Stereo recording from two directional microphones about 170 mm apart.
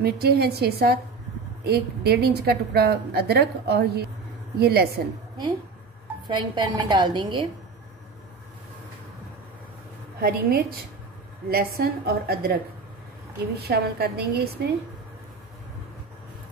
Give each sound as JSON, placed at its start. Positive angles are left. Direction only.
{"t": 0.0, "sound": "a woman's voice", "side_deg": -70}
{"t": 6.2, "sound": "a woman's voice", "side_deg": -25}
{"t": 10.2, "sound": "a woman's voice", "side_deg": -60}
{"t": 13.6, "sound": "a woman's voice", "side_deg": -70}